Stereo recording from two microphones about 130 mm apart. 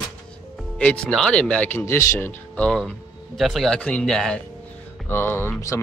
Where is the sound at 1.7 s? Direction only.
20° left (ahead or behind); by 4.4 s 5° left (ahead or behind).